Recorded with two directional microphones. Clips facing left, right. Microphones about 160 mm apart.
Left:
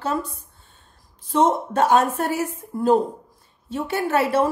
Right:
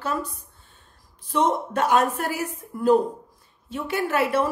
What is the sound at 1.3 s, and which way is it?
A woman's voice, 30° left (ahead or behind).